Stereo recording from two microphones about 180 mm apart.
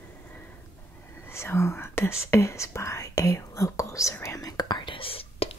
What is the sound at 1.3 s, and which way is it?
Whispering, 15° left (ahead or behind).